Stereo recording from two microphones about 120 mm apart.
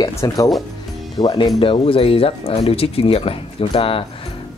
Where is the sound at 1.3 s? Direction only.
40° left (ahead or behind).